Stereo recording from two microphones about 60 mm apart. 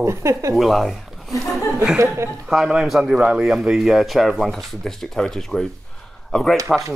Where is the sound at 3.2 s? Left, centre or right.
Centre.